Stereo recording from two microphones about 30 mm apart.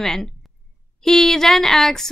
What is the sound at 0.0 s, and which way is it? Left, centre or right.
A woman's voice, centre.